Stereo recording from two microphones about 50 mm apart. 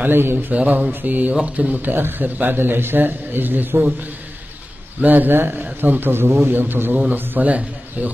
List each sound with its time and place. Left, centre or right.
0.0 s a man's voice: right
0.5 s a man's voice: right
1.3 s speech: right
1.7 s a man's voice: right
5.0 s a man's voice: right